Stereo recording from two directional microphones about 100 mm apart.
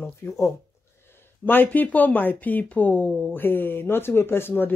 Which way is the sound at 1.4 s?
20° left (ahead or behind).